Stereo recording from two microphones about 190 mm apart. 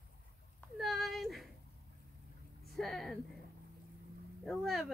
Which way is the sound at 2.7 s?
Centre (ahead or behind).